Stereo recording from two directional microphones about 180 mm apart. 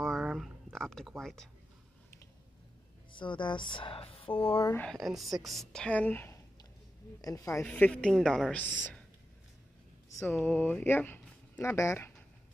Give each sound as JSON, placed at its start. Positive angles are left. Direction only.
{"t": 0.0, "sound": "a sound", "side_deg": 0}
{"t": 3.1, "sound": "speech", "side_deg": 25}
{"t": 4.7, "sound": "a woman's voice", "side_deg": 5}
{"t": 10.4, "sound": "speech", "side_deg": 5}